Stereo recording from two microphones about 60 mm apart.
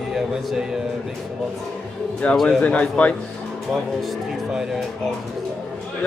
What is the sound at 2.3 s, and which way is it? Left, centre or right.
Speech, centre.